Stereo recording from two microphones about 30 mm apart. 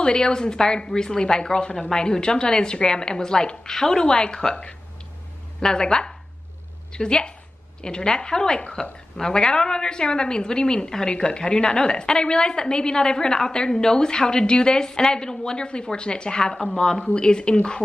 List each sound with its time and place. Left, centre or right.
0.0 s a woman's voice: left
11.1 s a woman's voice: left